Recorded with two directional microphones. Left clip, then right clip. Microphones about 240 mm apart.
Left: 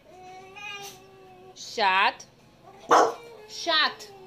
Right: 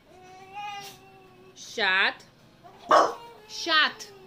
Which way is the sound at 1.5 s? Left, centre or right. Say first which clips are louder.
Left 2 dB; centre.